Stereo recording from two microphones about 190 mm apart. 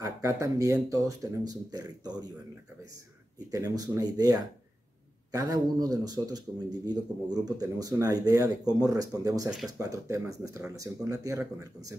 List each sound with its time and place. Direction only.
0.0 s speech: 15° right (ahead or behind)
3.5 s speech: 20° right (ahead or behind)